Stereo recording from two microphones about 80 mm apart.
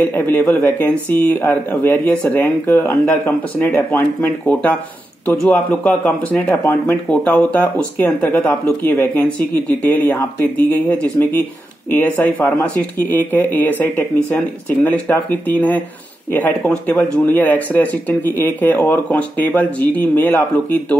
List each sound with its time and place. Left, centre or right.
0.0 s speech: left